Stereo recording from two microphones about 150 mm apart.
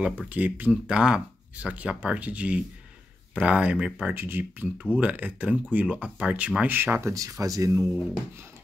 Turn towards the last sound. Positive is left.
turn(degrees=-20)  # may be behind; listen again after turning